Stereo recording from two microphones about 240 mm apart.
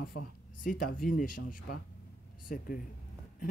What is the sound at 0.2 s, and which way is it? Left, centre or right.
Speech, left.